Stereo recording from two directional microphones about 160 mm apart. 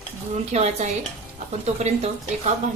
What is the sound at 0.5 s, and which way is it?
A woman's voice, 45° right (ahead or behind).